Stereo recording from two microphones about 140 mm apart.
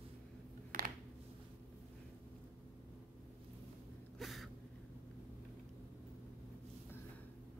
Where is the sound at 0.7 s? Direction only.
80° right.